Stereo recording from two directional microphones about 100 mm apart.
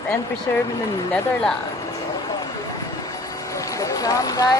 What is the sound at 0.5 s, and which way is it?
Speech, 20° left (ahead or behind).